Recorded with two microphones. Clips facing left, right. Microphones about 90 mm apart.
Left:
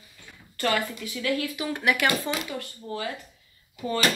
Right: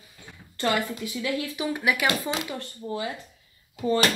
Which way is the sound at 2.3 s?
30° right (ahead or behind).